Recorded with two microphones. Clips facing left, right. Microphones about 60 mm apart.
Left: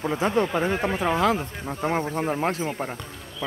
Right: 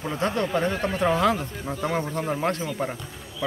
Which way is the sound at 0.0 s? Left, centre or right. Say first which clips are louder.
Left 3 dB; centre.